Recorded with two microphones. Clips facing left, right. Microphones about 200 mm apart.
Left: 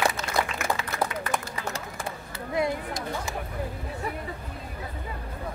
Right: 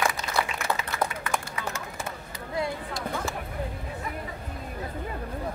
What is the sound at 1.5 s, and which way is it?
Run, 35° left (ahead or behind).